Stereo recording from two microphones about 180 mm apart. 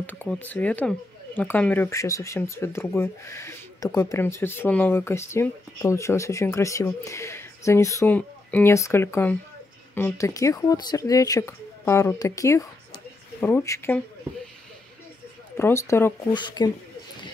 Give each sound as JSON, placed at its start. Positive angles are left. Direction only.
{"t": 0.0, "sound": "speech", "side_deg": 10}
{"t": 15.5, "sound": "speech", "side_deg": 15}